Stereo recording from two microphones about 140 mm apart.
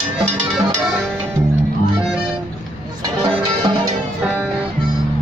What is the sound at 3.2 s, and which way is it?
Music, 35° right (ahead or behind).